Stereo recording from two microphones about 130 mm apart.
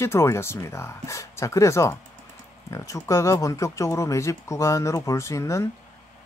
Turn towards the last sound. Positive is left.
turn(degrees=20)  # may be behind; listen again after turning